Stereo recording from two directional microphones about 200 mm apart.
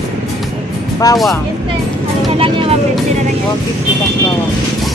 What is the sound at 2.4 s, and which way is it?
Vehicle, 25° right (ahead or behind).